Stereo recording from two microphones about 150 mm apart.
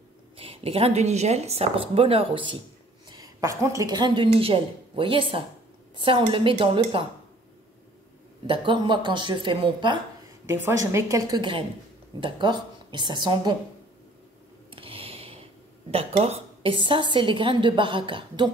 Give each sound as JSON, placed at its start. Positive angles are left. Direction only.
{"t": 0.4, "sound": "speech", "side_deg": -40}
{"t": 3.1, "sound": "a woman's voice", "side_deg": -25}
{"t": 8.5, "sound": "speech", "side_deg": -30}
{"t": 10.4, "sound": "a woman's voice", "side_deg": -20}
{"t": 14.7, "sound": "a sound", "side_deg": -40}
{"t": 15.9, "sound": "speech", "side_deg": -40}